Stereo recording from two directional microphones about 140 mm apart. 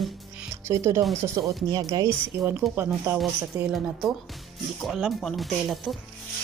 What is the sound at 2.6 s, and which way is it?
Speech, centre (ahead or behind).